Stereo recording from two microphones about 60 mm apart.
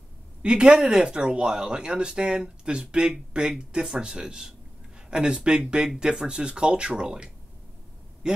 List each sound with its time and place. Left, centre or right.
0.4 s speech: centre